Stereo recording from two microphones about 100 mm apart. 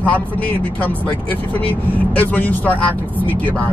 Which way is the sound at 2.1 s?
15° left (ahead or behind).